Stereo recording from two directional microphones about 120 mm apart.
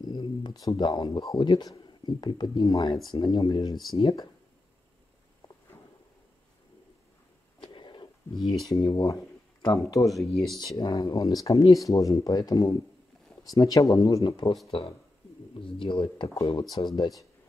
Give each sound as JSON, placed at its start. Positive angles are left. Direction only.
{"t": 0.0, "sound": "speech", "side_deg": 35}
{"t": 7.6, "sound": "a sound", "side_deg": 40}
{"t": 8.5, "sound": "speech", "side_deg": 0}
{"t": 8.7, "sound": "speech", "side_deg": 30}
{"t": 10.0, "sound": "speech", "side_deg": 0}
{"t": 10.8, "sound": "speech", "side_deg": 35}
{"t": 14.2, "sound": "speech", "side_deg": 40}
{"t": 15.5, "sound": "speech", "side_deg": 45}
{"t": 16.4, "sound": "speech", "side_deg": 35}